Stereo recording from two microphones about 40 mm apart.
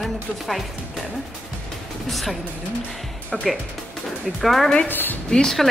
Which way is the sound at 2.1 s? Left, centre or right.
Centre.